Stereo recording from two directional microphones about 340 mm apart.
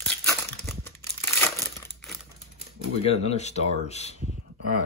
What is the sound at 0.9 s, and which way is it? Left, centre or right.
Crumpling, centre.